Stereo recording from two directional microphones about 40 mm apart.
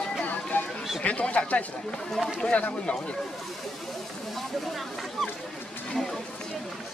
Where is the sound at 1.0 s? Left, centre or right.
Left.